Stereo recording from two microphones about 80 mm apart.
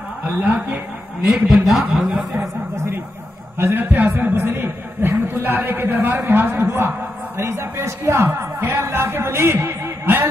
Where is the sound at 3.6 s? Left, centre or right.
Right.